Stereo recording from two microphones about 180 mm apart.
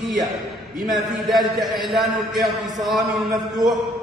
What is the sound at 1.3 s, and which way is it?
A man's voice, centre (ahead or behind).